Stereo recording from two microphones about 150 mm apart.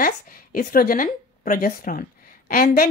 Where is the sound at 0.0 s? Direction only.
70° left (ahead or behind).